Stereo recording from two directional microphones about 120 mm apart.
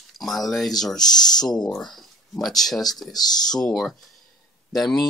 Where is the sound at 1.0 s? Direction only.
35° left (ahead or behind).